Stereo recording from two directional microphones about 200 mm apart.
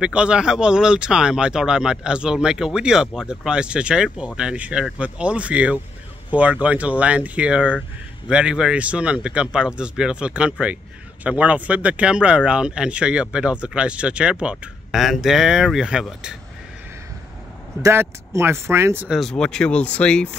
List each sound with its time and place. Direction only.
0.0 s speech: 5° right (ahead or behind)
17.8 s speech: 15° right (ahead or behind); by 20.3 s 5° left (ahead or behind)